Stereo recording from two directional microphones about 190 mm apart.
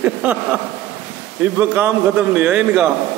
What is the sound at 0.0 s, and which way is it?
A man's voice, 10° right (ahead or behind).